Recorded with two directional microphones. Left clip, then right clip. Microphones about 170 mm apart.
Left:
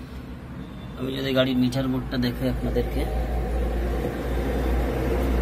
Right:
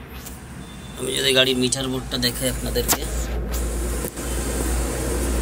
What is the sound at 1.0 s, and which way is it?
A man's voice, 5° left (ahead or behind).